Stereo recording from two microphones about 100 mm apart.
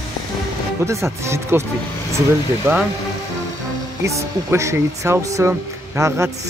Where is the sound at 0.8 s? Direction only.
25° right (ahead or behind).